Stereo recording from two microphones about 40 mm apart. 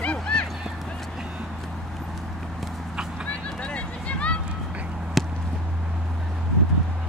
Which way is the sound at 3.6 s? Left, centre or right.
Left.